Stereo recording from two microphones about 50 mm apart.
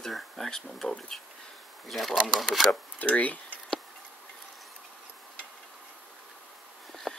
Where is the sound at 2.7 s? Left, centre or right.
Left.